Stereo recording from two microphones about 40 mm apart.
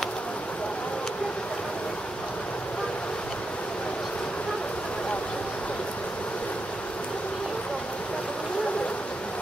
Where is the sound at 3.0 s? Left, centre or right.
Left.